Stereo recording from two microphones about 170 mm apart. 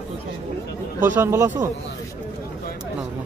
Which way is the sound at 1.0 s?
15° right (ahead or behind).